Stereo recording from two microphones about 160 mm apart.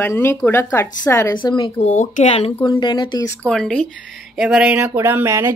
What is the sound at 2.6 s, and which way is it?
Speech, 25° left (ahead or behind).